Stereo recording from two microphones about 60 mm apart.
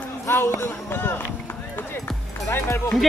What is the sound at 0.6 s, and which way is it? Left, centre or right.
Speech, left.